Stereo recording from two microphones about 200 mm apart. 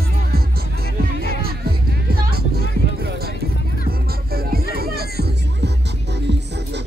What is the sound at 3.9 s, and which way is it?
Music, 50° right (ahead or behind).